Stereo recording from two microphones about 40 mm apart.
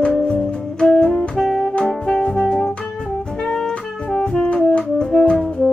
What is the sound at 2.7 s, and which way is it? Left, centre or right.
Music, left.